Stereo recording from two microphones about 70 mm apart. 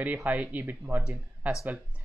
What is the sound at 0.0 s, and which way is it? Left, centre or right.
Speech, right.